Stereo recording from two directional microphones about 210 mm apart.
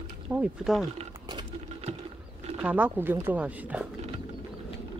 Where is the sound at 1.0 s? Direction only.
25° right (ahead or behind).